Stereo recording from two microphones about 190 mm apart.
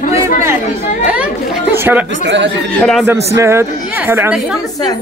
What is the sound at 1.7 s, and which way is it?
Speech, 10° right (ahead or behind).